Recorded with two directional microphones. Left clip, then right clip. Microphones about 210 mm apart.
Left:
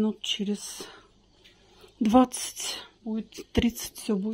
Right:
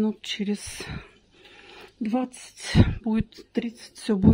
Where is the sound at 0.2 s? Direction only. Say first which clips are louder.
Even; 35° right (ahead or behind).